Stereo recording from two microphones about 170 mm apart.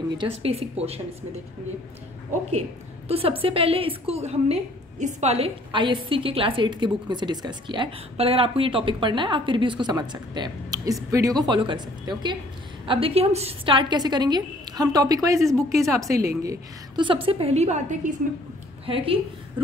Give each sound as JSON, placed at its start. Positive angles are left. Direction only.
{"t": 0.2, "sound": "a woman's voice", "side_deg": -35}
{"t": 3.1, "sound": "a woman's voice", "side_deg": -35}
{"t": 15.5, "sound": "a woman's voice", "side_deg": 0}
{"t": 15.9, "sound": "a woman's voice", "side_deg": -20}
{"t": 18.9, "sound": "a woman's voice", "side_deg": -30}